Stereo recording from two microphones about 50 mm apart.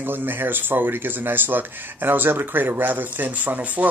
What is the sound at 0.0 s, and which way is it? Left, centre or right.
Speech, right.